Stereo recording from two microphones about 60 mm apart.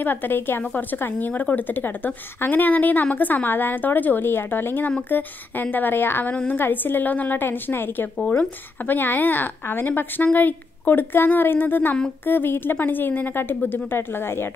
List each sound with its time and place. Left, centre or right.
0.0 s speech: left